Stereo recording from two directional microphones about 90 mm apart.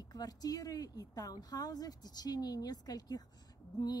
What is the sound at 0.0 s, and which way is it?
A woman's voice, 45° left (ahead or behind).